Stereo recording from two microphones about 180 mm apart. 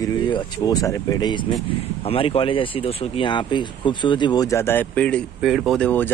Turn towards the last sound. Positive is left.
turn(degrees=10)  # may be behind; listen again after turning